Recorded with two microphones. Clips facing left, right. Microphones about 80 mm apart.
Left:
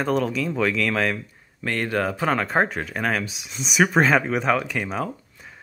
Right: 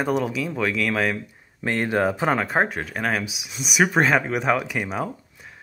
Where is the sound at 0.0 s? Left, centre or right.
Centre.